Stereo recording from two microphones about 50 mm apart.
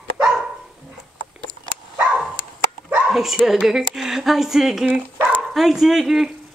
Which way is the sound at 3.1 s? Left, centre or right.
Centre.